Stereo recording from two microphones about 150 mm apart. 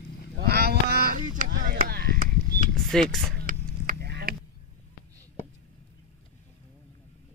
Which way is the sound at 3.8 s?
90° right.